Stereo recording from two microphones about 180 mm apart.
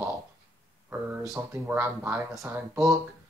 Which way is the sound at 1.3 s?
15° right (ahead or behind).